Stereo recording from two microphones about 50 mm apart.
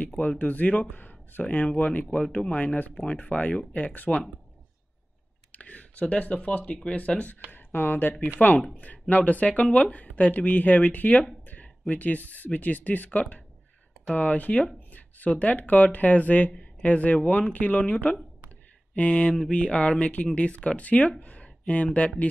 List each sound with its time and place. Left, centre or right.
0.4 s speech: left
5.5 s speech: left
7.5 s speech: left
11.4 s a sound: left
11.9 s speech: left
21.2 s a sound: left
21.7 s speech: left